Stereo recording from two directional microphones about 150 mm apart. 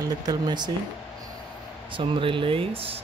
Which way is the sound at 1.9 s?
35° right (ahead or behind).